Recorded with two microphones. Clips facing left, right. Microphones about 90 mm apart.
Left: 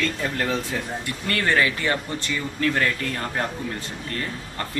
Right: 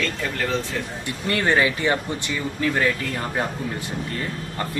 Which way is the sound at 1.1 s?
20° right (ahead or behind).